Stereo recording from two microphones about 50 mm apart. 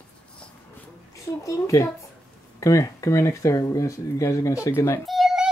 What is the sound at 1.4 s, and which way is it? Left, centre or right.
Speech, left.